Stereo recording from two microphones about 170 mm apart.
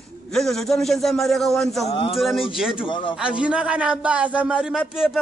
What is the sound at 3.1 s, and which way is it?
A man's voice, 5° right (ahead or behind).